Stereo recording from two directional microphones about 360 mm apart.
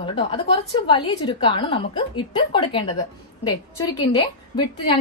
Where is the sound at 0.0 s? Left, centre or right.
Centre.